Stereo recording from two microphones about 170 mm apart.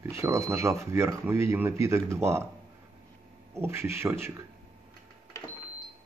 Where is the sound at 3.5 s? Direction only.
15° right (ahead or behind).